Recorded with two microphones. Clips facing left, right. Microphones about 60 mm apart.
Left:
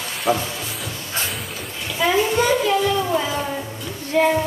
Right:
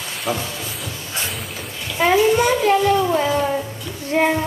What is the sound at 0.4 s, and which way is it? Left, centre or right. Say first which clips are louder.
Music: even; centre.